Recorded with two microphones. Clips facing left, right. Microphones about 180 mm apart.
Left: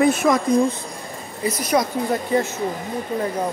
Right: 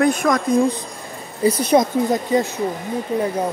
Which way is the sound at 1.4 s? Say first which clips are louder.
Right 5 dB; 30° right (ahead or behind).